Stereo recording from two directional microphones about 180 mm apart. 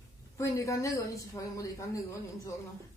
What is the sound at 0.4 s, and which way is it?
A woman's voice, 15° left (ahead or behind).